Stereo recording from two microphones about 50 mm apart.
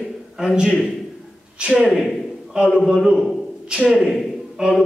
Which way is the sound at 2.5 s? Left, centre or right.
Centre.